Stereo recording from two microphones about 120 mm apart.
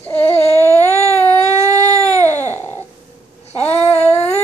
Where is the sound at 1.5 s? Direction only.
75° left (ahead or behind).